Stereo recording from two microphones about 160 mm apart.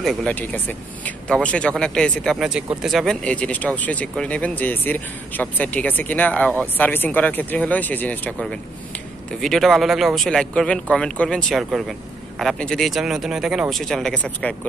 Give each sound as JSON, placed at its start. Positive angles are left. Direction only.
{"t": 0.0, "sound": "speech", "side_deg": 5}